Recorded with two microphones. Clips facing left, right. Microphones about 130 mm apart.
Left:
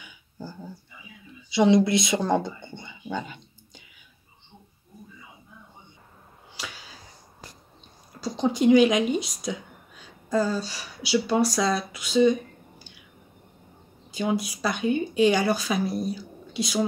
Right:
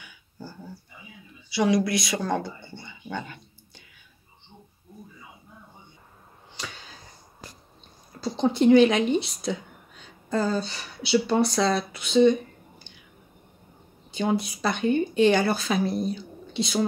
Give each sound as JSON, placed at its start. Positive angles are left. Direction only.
{"t": 0.0, "sound": "dog", "side_deg": 20}
{"t": 1.5, "sound": "speech", "side_deg": 20}
{"t": 6.5, "sound": "a sound", "side_deg": 5}
{"t": 8.2, "sound": "speech", "side_deg": 15}
{"t": 14.1, "sound": "speech", "side_deg": 10}